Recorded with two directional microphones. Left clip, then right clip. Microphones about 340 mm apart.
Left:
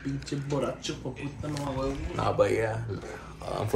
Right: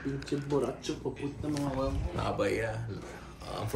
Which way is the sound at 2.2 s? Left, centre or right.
Centre.